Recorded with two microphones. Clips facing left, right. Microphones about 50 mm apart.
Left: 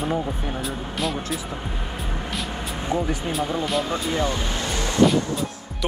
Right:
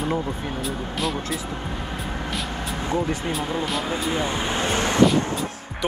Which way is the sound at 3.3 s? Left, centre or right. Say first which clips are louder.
Left 1 dB; centre.